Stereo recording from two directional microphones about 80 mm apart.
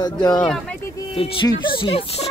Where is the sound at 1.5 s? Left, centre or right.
Left.